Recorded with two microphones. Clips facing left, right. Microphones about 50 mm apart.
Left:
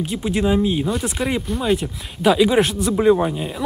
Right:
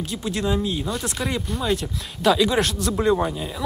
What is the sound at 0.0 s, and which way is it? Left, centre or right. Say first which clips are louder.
Speech: left 5 dB; centre.